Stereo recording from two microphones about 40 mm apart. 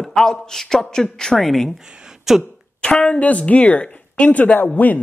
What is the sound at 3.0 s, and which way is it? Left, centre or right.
A woman's voice, left.